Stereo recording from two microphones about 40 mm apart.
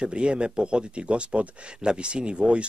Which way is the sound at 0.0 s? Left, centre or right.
Right.